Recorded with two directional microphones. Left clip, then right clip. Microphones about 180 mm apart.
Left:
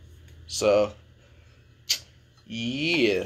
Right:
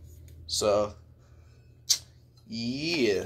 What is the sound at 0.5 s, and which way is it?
Speech, 25° left (ahead or behind).